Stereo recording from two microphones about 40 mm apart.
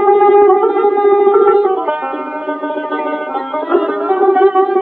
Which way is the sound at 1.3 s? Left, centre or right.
Centre.